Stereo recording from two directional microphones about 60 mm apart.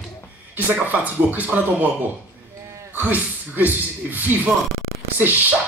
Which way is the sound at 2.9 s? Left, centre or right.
Right.